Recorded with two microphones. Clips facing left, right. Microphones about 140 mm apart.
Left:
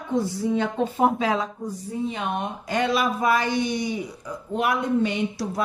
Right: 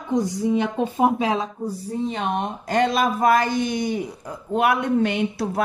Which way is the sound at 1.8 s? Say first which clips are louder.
Right 2 dB; 35° right (ahead or behind).